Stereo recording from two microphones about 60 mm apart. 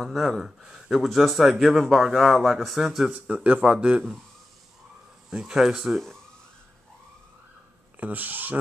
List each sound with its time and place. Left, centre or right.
0.0 s speech: centre
3.1 s speech: centre
5.3 s speech: centre
8.0 s speech: right